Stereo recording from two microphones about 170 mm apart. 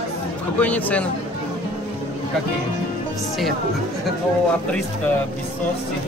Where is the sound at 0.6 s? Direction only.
10° left (ahead or behind).